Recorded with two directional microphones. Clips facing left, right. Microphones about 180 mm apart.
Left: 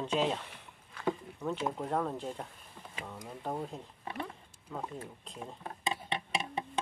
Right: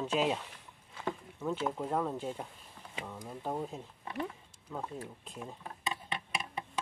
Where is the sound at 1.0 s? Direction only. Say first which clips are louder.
Left 3 dB; centre (ahead or behind).